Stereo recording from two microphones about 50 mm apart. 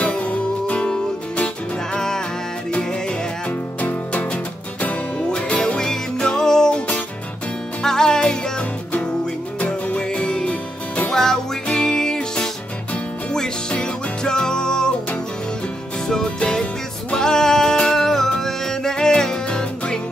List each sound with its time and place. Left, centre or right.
0.0 s music: left
2.0 s music: centre
7.8 s music: centre
9.7 s music: left
16.3 s music: centre